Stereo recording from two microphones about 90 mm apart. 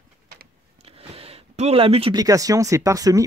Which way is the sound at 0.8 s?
90° right.